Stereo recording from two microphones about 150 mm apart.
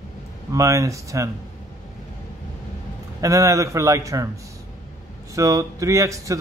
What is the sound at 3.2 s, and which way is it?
A man's voice, 20° right (ahead or behind).